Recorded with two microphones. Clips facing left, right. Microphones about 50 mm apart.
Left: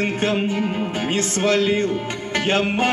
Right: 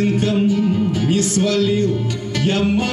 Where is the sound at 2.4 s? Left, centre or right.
Left.